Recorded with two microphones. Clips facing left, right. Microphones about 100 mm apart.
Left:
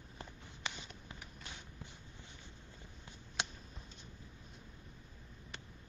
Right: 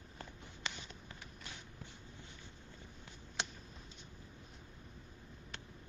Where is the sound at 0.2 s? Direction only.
15° left (ahead or behind).